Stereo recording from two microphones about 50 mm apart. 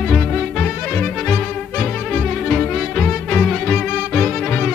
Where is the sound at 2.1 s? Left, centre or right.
Centre.